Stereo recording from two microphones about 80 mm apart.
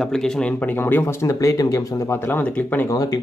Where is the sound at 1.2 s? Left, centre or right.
Left.